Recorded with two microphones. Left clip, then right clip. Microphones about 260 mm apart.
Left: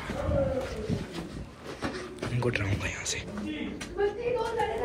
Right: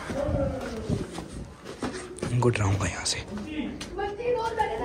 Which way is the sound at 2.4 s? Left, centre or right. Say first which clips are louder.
Right 5 dB; centre.